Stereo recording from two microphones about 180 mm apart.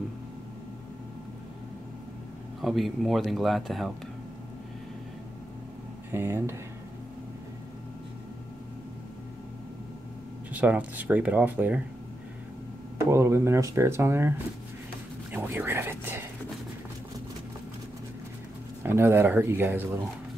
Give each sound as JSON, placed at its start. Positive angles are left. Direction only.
{"t": 2.6, "sound": "speech", "side_deg": 0}
{"t": 6.1, "sound": "speech", "side_deg": -15}
{"t": 10.5, "sound": "speech", "side_deg": -10}
{"t": 13.0, "sound": "speech", "side_deg": -15}
{"t": 18.8, "sound": "speech", "side_deg": -10}